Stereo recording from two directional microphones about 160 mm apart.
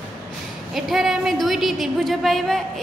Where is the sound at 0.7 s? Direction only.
Centre (ahead or behind).